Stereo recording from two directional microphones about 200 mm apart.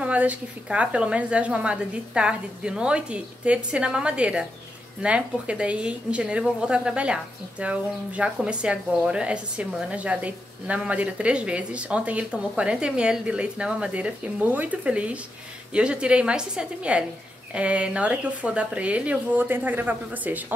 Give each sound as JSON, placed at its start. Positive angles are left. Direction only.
{"t": 0.0, "sound": "a woman's voice", "side_deg": -5}